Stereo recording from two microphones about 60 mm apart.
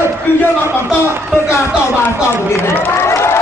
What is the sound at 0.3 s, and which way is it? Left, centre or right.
Speech, left.